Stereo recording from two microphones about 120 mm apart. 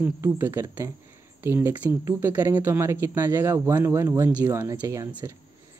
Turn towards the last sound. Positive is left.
turn(degrees=-25)  # may be behind; listen again after turning